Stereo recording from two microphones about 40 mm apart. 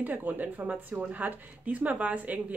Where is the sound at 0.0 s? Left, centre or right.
Right.